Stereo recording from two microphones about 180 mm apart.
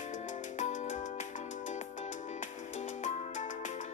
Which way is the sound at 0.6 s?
40° left (ahead or behind).